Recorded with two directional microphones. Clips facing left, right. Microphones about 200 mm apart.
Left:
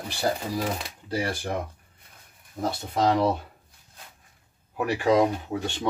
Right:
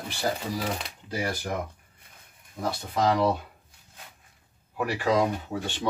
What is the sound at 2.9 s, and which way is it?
Speech, 25° left (ahead or behind).